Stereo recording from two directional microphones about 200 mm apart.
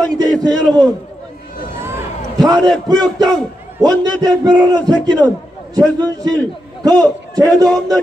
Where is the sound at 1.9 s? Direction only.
15° right (ahead or behind).